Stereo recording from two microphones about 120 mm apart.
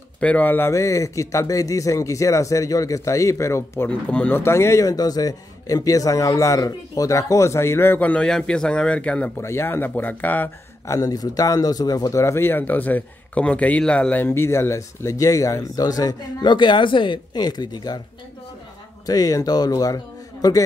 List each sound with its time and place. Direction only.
0.2 s speech: 15° left (ahead or behind)
9.4 s speech: 20° left (ahead or behind)
10.9 s speech: 30° left (ahead or behind)
19.0 s speech: 30° left (ahead or behind)